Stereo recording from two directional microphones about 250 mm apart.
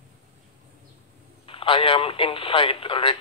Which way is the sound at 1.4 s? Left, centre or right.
Left.